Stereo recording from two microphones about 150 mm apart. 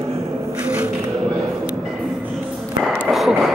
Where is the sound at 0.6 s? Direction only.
10° right (ahead or behind).